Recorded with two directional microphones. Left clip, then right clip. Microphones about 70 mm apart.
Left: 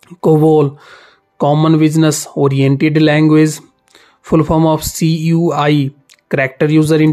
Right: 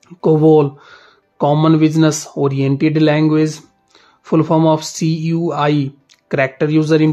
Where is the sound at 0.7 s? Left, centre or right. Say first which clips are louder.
Left 3 dB; left.